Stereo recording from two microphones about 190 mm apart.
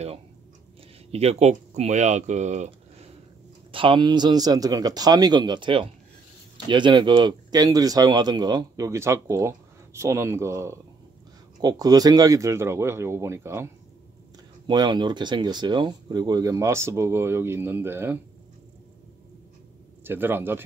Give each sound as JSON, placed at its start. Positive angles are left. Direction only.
{"t": 1.1, "sound": "speech", "side_deg": -35}
{"t": 3.7, "sound": "speech", "side_deg": -25}
{"t": 14.7, "sound": "speech", "side_deg": -20}
{"t": 20.0, "sound": "speech", "side_deg": -10}